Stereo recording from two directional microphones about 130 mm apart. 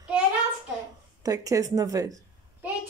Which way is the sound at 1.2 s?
25° right (ahead or behind).